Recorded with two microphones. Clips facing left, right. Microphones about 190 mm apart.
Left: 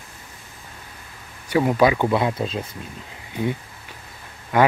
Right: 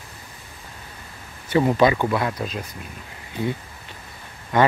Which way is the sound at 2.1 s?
25° left (ahead or behind).